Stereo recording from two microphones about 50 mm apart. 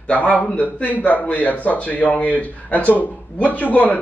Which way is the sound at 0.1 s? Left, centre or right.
Left.